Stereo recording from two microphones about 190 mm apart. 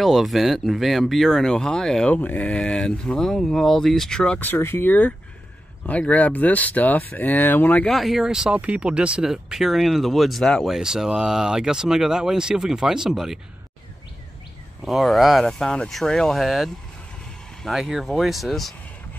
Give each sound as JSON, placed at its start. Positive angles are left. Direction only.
{"t": 0.0, "sound": "speech", "side_deg": 0}
{"t": 14.9, "sound": "speech", "side_deg": 0}